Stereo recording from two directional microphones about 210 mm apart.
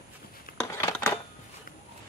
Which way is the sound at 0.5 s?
45° left (ahead or behind).